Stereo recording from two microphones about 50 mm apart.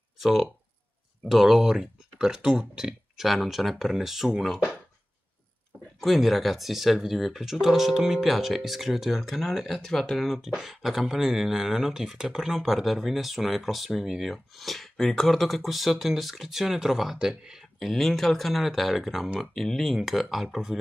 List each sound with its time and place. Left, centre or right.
0.2 s speech: centre
3.2 s speech: centre
5.9 s speech: centre
10.2 s speech: centre